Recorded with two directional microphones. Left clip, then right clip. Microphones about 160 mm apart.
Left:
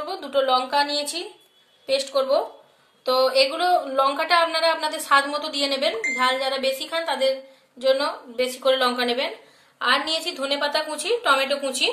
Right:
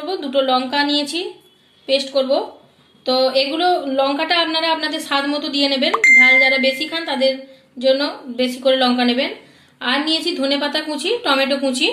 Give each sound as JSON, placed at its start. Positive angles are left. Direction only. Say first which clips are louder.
{"t": 0.0, "sound": "a woman's voice", "louder": "right 4 dB", "side_deg": 75}